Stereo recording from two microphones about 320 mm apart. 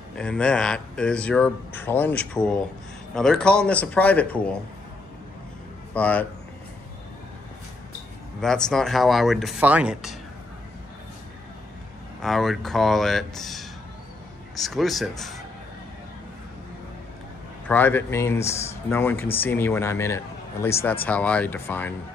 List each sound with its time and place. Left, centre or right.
0.1 s speech: centre
5.9 s speech: centre
8.4 s speech: centre
12.2 s speech: centre
17.6 s speech: centre